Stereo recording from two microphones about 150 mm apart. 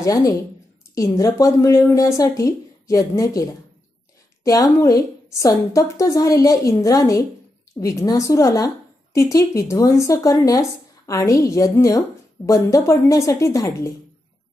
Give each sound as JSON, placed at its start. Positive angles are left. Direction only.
{"t": 0.0, "sound": "a woman's voice", "side_deg": 20}
{"t": 4.5, "sound": "a woman's voice", "side_deg": 20}